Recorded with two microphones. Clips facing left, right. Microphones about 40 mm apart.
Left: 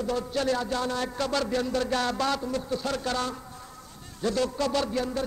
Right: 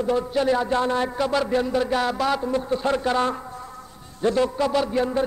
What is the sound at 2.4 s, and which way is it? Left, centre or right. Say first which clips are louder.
Speech: right 7 dB; right.